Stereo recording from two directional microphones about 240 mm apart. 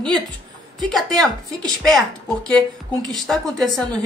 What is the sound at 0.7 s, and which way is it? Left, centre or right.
A woman's voice, centre.